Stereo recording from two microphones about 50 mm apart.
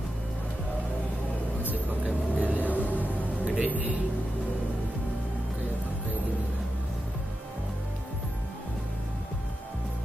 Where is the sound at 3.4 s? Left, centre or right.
Right.